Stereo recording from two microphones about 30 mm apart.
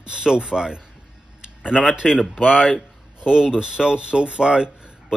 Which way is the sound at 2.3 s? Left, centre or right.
Centre.